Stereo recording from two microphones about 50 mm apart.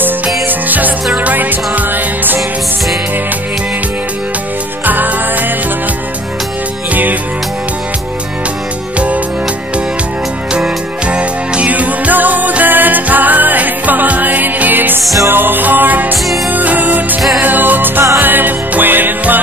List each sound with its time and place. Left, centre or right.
0.5 s music: right
4.8 s music: right
6.9 s music: right
10.5 s music: right